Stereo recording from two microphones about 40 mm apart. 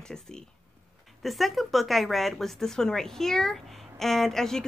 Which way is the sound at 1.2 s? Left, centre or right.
Centre.